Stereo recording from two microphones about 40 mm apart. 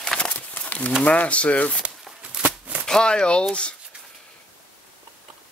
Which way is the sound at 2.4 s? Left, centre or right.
Centre.